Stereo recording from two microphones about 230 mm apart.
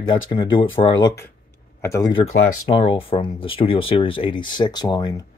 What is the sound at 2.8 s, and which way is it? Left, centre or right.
Speech, left.